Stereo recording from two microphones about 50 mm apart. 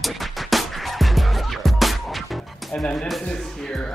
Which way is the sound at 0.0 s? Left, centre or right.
Centre.